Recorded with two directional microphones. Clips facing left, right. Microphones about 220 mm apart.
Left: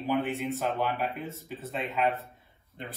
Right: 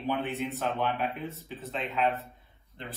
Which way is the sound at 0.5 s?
Centre (ahead or behind).